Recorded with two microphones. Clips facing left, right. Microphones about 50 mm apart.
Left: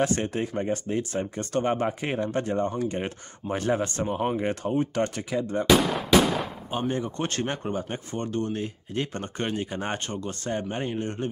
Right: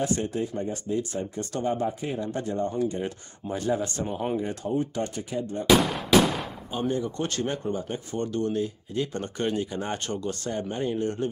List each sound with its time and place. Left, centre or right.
0.0 s speech: left
2.3 s speech: left
5.9 s gunshot: centre
6.7 s speech: left
9.2 s speech: left